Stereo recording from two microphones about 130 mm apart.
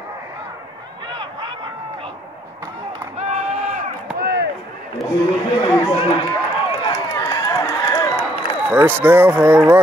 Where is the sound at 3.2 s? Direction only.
60° right (ahead or behind).